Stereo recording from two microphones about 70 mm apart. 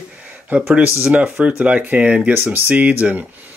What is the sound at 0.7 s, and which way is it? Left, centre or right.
Speech, centre.